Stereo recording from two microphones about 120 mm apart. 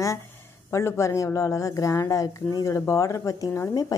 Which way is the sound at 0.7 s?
25° left (ahead or behind).